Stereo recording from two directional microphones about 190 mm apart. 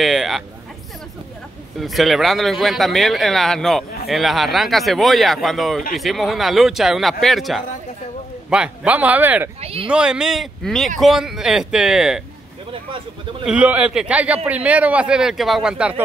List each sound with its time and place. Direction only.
0.0 s a sound: centre (ahead or behind)
1.8 s a man's voice: centre (ahead or behind)
9.6 s speech: 30° right (ahead or behind)
9.8 s speech: 5° right (ahead or behind)
13.5 s a man's voice: 5° right (ahead or behind)